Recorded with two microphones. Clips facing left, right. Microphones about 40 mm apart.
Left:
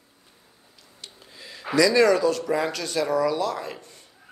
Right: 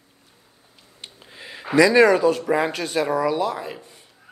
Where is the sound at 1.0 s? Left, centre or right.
Right.